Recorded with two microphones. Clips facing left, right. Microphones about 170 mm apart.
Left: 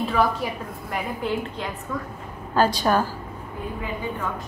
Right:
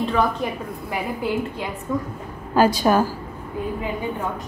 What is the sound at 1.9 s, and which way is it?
A woman's voice, 20° right (ahead or behind).